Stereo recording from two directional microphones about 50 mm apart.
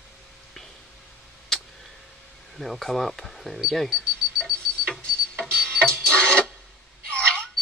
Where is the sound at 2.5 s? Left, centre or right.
Centre.